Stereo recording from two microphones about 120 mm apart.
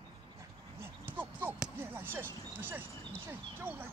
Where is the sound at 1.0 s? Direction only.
15° right (ahead or behind).